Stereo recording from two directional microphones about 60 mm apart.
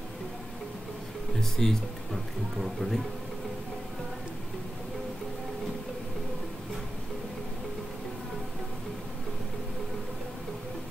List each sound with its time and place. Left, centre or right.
1.4 s speech: centre